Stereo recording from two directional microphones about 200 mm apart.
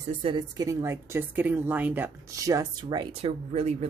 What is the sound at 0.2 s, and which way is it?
A woman's voice, 25° right (ahead or behind).